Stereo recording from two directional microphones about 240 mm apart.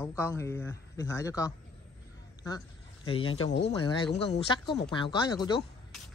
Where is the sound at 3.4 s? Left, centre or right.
Left.